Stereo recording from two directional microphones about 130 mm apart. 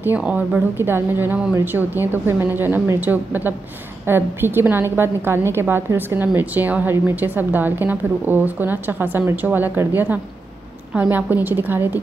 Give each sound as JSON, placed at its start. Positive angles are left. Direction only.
{"t": 0.0, "sound": "a woman's voice", "side_deg": -10}